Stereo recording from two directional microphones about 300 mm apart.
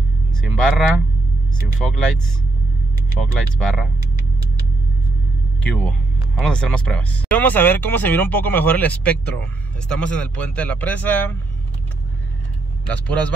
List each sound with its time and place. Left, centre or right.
0.6 s speech: centre
3.3 s speech: centre
5.6 s speech: centre
12.8 s speech: centre